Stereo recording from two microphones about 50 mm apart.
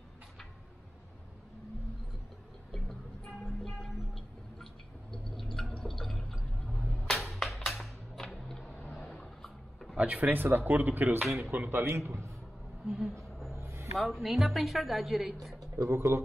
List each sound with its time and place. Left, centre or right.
2.7 s music: centre
5.1 s a sound: centre
7.2 s music: centre
8.2 s a sound: centre
9.9 s speech: right
10.3 s speech: right
11.2 s a woman's voice: centre
11.7 s speech: right
12.8 s a woman's voice: centre
13.6 s music: right
13.9 s a woman's voice: centre
15.7 s speech: right